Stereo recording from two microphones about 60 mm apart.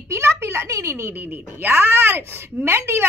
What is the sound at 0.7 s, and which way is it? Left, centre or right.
Speech, right.